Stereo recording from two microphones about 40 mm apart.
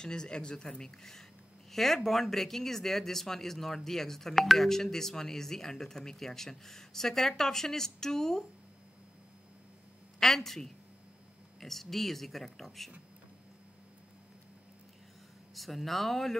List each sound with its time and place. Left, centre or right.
0.0 s speech: centre
10.2 s speech: centre
15.5 s speech: centre